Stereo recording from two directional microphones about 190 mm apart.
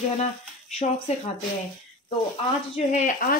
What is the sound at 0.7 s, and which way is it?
Speech, 30° left (ahead or behind).